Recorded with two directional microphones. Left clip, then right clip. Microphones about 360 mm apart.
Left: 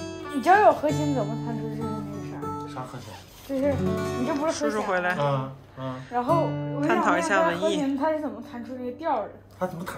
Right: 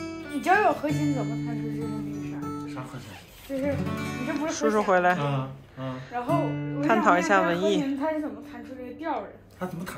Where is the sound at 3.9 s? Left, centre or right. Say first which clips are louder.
Left 4 dB; centre.